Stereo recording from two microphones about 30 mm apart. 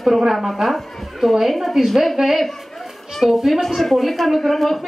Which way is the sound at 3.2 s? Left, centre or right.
Centre.